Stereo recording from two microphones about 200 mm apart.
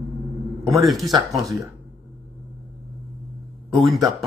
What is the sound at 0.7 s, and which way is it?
Speech, centre (ahead or behind).